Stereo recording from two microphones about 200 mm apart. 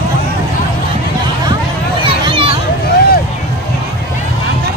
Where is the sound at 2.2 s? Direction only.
25° right (ahead or behind).